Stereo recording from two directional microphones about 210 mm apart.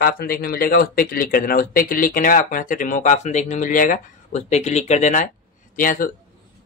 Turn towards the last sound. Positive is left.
turn(degrees=40)  # may be behind; listen again after turning